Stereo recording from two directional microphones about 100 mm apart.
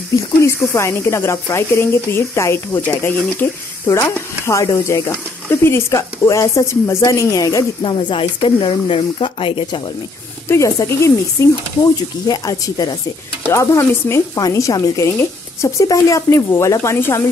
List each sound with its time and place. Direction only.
0.7 s a woman's voice: 25° left (ahead or behind)
7.8 s speech: 55° left (ahead or behind)
10.5 s a woman's voice: 30° left (ahead or behind)
13.5 s a woman's voice: 30° left (ahead or behind)